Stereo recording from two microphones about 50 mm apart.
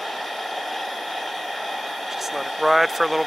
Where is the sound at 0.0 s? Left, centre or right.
Centre.